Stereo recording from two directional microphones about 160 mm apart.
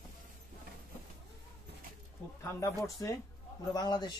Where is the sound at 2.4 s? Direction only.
20° left (ahead or behind).